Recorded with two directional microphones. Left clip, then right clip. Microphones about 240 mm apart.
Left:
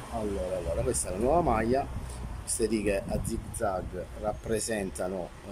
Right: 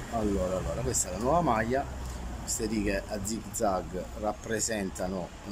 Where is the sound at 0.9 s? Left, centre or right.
Centre.